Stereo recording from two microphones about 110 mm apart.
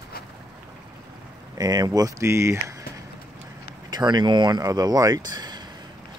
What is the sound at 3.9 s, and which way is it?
Speech, 40° right (ahead or behind).